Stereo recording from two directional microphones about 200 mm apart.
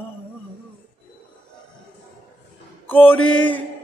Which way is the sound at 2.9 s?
10° left (ahead or behind).